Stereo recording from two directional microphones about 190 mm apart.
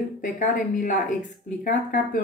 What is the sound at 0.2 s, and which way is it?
A woman's voice, 40° left (ahead or behind).